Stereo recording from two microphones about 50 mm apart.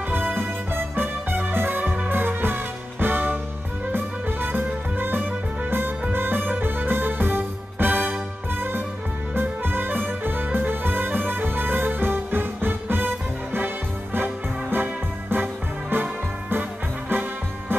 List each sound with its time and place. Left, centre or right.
0.1 s music: right